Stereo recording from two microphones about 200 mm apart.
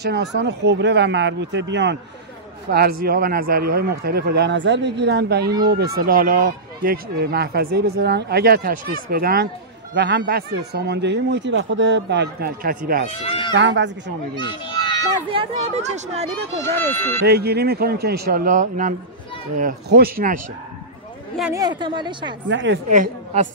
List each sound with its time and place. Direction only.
0.0 s speech: 60° right (ahead or behind)
2.7 s speech: 50° right (ahead or behind)
9.9 s speech: 60° right (ahead or behind)
13.1 s speech: 30° left (ahead or behind)
13.6 s speech: 60° right (ahead or behind)
14.5 s children playing: 25° left (ahead or behind)
15.2 s speech: 30° right (ahead or behind)
16.6 s speech: 10° left (ahead or behind)
17.3 s speech: 50° right (ahead or behind)
21.5 s a woman's voice: 20° right (ahead or behind)
22.5 s speech: 65° right (ahead or behind)
22.8 s speech: 40° right (ahead or behind)